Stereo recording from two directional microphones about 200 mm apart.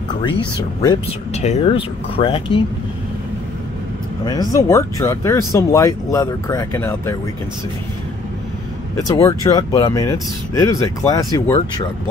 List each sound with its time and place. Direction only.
0.1 s speech: 25° left (ahead or behind)
4.2 s speech: 20° left (ahead or behind)
8.9 s speech: 15° left (ahead or behind)